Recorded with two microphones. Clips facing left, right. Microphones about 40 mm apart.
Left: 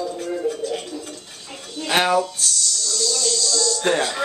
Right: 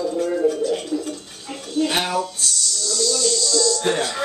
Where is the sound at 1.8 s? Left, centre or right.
Left.